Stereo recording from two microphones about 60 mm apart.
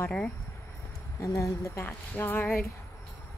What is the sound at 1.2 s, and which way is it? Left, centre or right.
Speech, left.